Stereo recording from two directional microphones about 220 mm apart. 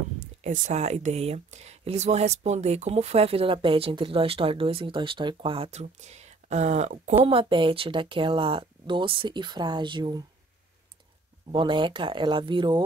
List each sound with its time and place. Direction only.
0.4 s speech: 30° right (ahead or behind)
11.5 s speech: 20° right (ahead or behind)